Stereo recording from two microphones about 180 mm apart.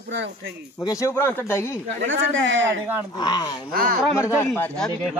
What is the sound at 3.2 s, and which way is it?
Speech, 25° left (ahead or behind).